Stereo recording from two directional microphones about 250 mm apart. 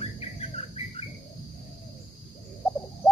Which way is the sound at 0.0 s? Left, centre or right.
Left.